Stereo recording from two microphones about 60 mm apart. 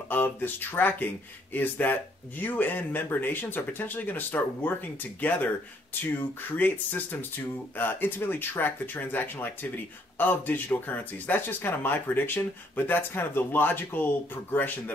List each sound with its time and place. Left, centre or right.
0.1 s speech: left